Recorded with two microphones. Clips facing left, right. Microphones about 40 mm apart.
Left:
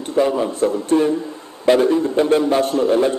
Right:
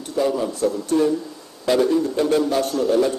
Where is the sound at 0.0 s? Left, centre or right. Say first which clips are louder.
Left 4 dB; left.